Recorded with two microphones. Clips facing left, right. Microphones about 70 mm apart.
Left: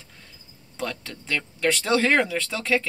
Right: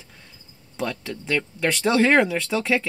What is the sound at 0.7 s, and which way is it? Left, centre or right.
Speech, centre.